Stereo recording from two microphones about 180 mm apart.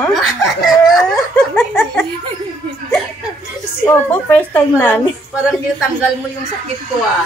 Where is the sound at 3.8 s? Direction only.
10° left (ahead or behind).